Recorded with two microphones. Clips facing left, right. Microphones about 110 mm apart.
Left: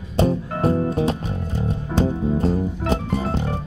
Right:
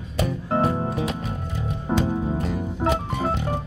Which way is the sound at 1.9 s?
35° right (ahead or behind).